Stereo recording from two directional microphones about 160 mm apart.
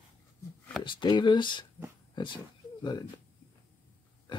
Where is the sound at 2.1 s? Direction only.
30° left (ahead or behind).